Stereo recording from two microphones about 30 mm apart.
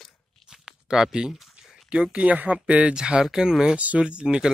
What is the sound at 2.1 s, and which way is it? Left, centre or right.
Speech, right.